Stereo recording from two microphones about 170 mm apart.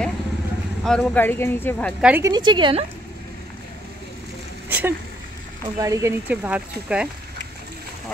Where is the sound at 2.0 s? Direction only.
5° right (ahead or behind).